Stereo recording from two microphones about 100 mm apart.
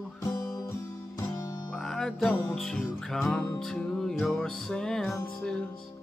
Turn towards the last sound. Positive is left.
turn(degrees=10)  # may be behind; listen again after turning